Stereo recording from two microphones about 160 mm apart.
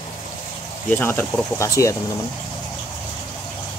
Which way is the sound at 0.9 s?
10° left (ahead or behind).